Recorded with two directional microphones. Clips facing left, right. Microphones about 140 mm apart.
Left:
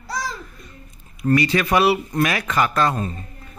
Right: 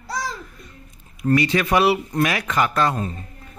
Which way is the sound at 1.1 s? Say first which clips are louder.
Even; 20° right (ahead or behind).